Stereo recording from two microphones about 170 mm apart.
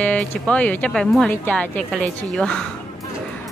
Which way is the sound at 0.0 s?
10° left (ahead or behind).